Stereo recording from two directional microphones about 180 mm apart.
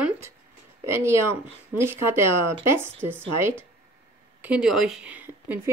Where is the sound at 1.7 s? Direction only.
15° right (ahead or behind).